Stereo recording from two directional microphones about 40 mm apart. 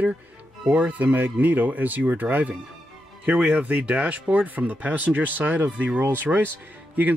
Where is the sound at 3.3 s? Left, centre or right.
Right.